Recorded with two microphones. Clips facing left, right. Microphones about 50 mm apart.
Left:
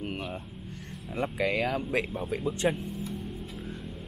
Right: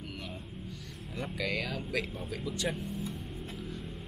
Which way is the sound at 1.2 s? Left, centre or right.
Left.